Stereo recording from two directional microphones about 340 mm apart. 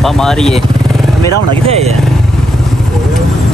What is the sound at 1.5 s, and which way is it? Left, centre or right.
Speech, centre.